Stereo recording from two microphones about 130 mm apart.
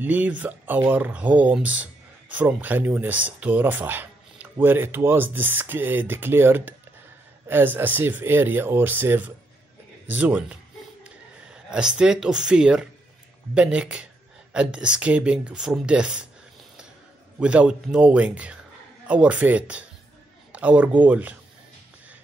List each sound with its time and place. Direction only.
0.0 s speech: 10° right (ahead or behind)
17.4 s speech: 10° right (ahead or behind)